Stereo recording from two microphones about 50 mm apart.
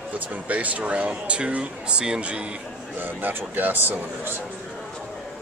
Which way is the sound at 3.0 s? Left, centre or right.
Right.